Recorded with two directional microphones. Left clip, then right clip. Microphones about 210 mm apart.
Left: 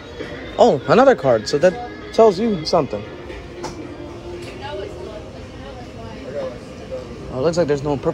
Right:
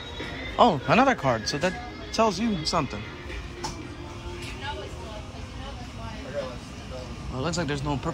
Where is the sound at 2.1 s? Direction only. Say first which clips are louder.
Left 11 dB; 30° right (ahead or behind).